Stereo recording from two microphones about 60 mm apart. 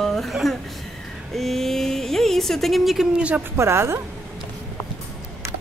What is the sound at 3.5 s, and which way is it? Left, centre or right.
Speech, right.